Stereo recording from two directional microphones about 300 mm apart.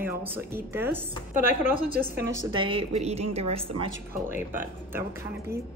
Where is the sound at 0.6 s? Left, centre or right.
Centre.